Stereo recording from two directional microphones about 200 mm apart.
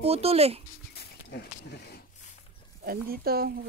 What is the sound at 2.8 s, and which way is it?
Speech, 50° right (ahead or behind).